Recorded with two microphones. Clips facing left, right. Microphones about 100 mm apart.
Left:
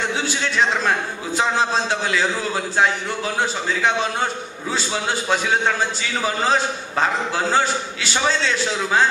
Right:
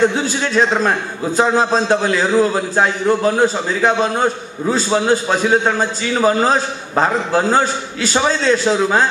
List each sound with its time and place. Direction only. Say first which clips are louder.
0.4 s a man's voice: right 6 dB; 40° right (ahead or behind)